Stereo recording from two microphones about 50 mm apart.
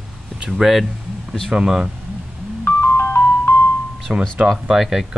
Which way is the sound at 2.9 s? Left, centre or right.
Left.